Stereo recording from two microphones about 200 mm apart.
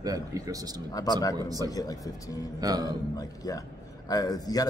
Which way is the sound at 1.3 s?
20° right (ahead or behind).